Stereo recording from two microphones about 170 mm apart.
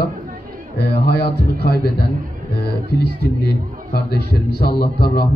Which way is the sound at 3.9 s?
65° left (ahead or behind).